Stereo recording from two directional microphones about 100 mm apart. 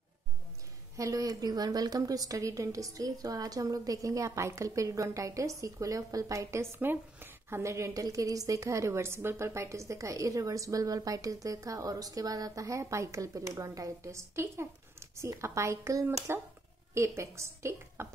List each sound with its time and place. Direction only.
0.9 s a woman's voice: 35° right (ahead or behind)